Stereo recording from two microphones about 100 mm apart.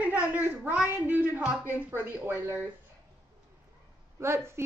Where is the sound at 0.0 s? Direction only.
15° right (ahead or behind).